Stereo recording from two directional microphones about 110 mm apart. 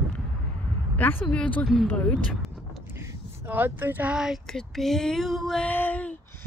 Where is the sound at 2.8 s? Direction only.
20° right (ahead or behind); by 5.6 s centre (ahead or behind).